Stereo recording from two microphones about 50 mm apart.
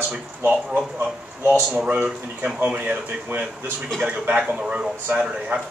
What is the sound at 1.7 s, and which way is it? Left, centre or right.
A man's voice, right.